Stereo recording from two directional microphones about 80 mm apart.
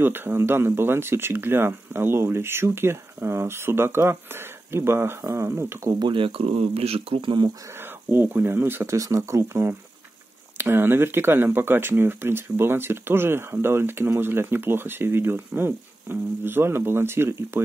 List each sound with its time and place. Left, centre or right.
0.0 s speech: right
5.9 s speech: right
7.7 s speech: right
8.9 s speech: right